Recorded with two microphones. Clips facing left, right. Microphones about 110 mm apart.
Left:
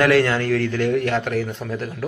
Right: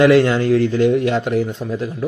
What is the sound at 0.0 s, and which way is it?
Speech, 20° right (ahead or behind).